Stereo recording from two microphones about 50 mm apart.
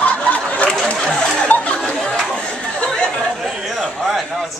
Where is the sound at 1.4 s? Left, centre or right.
Left.